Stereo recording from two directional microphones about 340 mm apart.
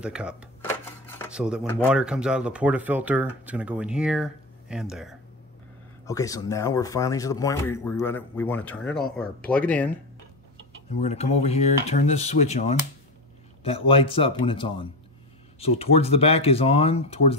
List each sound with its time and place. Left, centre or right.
0.0 s speech: centre
6.0 s speech: centre
10.9 s speech: centre